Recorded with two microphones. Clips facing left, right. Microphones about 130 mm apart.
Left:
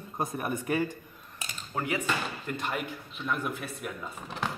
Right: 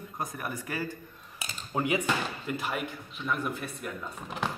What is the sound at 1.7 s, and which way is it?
Cutlery, 15° right (ahead or behind).